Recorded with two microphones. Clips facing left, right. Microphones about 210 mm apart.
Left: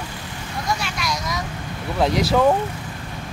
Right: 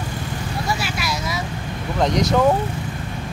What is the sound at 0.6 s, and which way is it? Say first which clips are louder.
Vehicle: left 1 dB; 5° right (ahead or behind).